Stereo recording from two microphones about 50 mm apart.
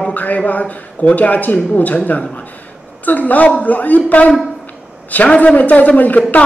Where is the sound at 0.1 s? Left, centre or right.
Left.